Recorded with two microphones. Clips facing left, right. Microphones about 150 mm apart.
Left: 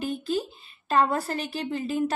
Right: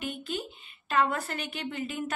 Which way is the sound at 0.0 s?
35° left (ahead or behind).